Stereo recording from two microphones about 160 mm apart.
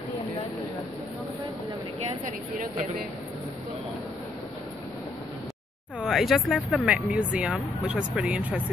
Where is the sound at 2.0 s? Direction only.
50° right (ahead or behind).